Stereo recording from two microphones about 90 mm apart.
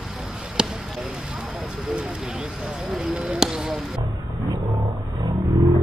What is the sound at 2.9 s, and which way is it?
Speech, 10° right (ahead or behind).